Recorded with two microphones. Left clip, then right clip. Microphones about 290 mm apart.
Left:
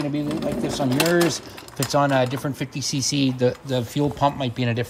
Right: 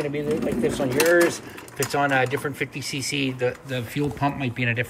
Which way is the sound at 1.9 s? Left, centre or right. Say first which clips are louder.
Left 2 dB; centre.